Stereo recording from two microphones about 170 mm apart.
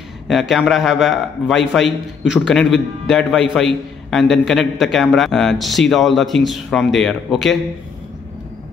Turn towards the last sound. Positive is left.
turn(degrees=0)  # may be behind; listen again after turning